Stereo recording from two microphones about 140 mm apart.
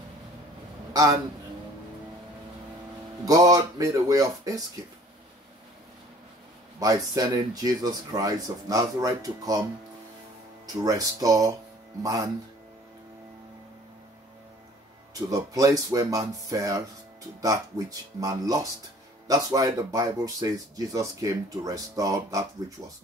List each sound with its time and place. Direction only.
0.9 s speech: 25° right (ahead or behind)
3.3 s speech: 25° right (ahead or behind)
6.8 s speech: 25° right (ahead or behind)
10.8 s speech: 25° right (ahead or behind)
15.1 s speech: 25° right (ahead or behind)